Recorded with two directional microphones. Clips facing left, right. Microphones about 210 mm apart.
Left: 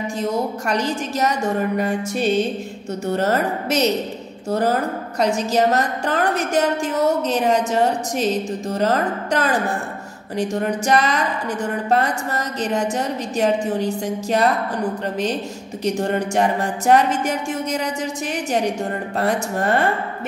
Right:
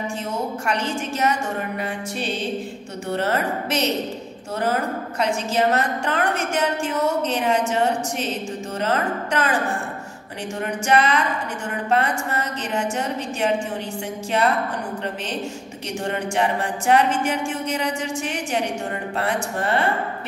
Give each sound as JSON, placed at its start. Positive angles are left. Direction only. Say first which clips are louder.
{"t": 0.2, "sound": "a woman's voice", "louder": "left 4 dB", "side_deg": 40}
{"t": 15.8, "sound": "a woman's voice", "louder": "left 6 dB", "side_deg": 40}
{"t": 19.1, "sound": "a woman's voice", "louder": "left 4 dB", "side_deg": 40}